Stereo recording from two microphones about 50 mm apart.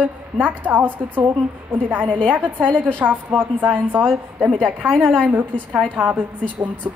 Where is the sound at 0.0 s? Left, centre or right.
Right.